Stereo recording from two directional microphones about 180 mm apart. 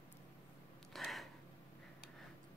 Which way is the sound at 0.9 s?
Centre (ahead or behind).